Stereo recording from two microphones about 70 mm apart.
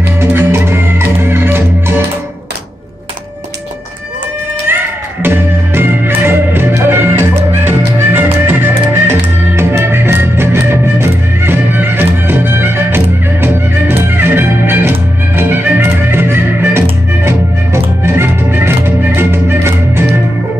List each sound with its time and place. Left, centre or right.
0.2 s music: right
5.2 s music: right